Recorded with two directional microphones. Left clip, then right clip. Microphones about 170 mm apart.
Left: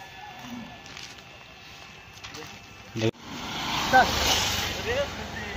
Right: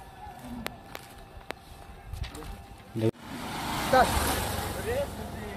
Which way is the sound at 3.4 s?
5° left (ahead or behind).